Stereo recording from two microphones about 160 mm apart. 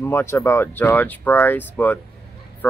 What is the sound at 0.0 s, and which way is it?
Speech, 15° left (ahead or behind).